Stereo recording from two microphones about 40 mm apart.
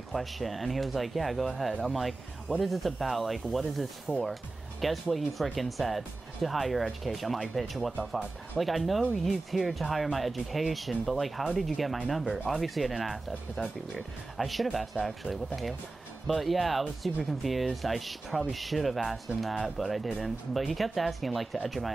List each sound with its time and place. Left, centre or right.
0.1 s speech: centre
4.1 s speech: right
4.8 s speech: centre
16.3 s speech: centre